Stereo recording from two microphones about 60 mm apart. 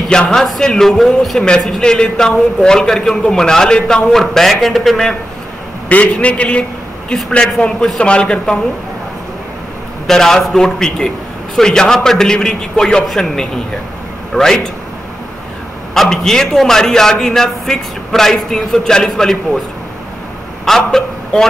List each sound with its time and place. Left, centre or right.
0.1 s a man's voice: centre
1.8 s a man's voice: centre
5.9 s a man's voice: left
7.2 s a man's voice: centre
10.0 s a man's voice: centre
15.9 s a man's voice: centre
20.6 s a woman's voice: centre